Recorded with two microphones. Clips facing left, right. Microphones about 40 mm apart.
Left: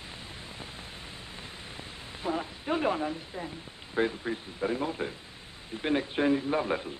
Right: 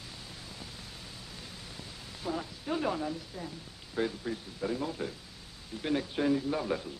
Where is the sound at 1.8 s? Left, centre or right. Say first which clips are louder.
Left 4 dB; left.